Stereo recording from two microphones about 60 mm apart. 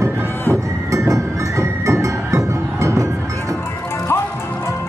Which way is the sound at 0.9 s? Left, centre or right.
Right.